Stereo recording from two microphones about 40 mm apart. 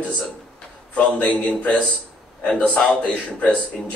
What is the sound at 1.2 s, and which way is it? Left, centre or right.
Speech, left.